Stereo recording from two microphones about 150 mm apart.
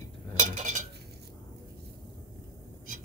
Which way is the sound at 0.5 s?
60° right (ahead or behind).